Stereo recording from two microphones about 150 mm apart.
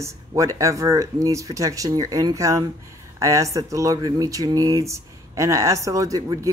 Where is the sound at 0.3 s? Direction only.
20° right (ahead or behind).